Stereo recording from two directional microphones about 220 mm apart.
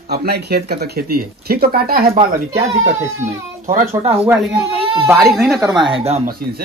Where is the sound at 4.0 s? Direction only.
25° right (ahead or behind).